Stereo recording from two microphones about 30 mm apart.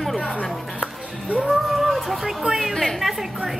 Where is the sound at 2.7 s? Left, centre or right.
Centre.